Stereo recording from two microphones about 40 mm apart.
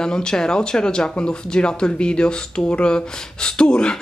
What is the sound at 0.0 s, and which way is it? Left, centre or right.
Speech, centre.